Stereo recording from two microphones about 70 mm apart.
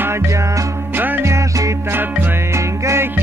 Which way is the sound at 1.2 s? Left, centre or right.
Right.